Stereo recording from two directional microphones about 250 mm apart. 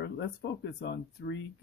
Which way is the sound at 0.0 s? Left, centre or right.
Left.